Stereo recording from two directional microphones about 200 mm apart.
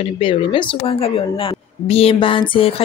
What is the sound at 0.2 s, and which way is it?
A woman's voice, 25° left (ahead or behind).